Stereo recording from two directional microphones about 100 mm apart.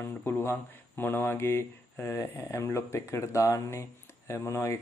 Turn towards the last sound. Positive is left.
turn(degrees=25)  # may be behind; listen again after turning